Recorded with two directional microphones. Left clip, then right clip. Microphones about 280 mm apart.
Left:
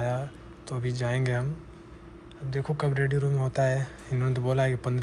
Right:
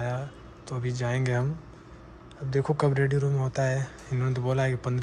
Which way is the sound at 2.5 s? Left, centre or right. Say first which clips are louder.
Right 5 dB; right.